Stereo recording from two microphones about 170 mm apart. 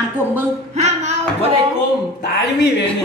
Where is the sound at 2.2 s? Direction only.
75° left (ahead or behind).